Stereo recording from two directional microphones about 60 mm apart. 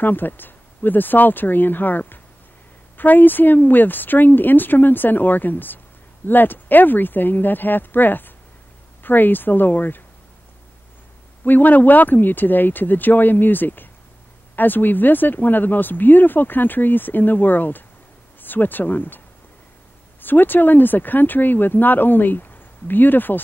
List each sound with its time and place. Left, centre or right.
0.0 s speech: left
11.4 s speech: left